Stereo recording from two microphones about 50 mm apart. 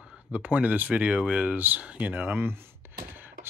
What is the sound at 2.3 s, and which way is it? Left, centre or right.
Speech, right.